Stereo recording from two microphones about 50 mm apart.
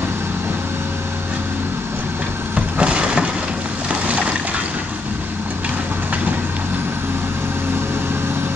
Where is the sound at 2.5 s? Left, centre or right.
Right.